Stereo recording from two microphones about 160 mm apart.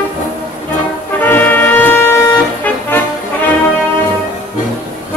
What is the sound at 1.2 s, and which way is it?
Music, 10° left (ahead or behind).